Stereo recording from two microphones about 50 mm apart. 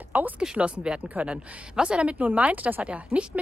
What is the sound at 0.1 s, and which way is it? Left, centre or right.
A woman's voice, right.